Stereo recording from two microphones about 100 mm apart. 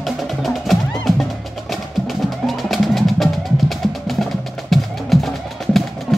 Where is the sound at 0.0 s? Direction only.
Centre (ahead or behind).